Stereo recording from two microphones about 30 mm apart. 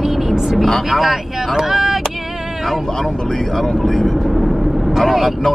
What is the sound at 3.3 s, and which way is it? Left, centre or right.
Speech, centre.